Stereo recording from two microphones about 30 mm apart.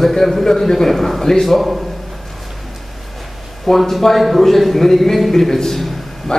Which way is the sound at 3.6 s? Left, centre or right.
Centre.